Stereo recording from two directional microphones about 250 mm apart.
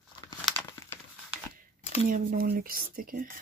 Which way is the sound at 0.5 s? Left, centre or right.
Centre.